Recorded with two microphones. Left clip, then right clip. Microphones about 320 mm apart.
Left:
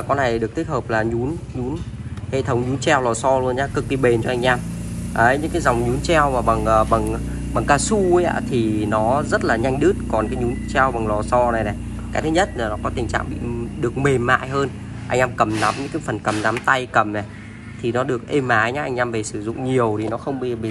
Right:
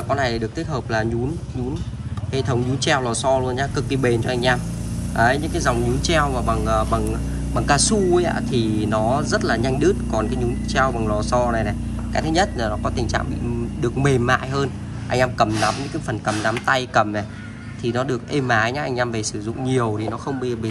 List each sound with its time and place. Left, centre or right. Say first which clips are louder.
0.1 s speech: left 3 dB; centre
2.3 s a man's voice: left 2 dB; centre